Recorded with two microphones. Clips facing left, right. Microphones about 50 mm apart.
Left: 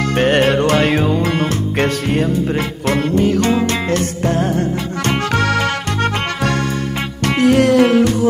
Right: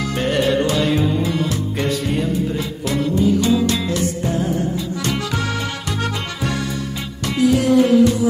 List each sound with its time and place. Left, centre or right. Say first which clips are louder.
0.1 s music: left 5 dB; left
7.2 s music: left 3 dB; left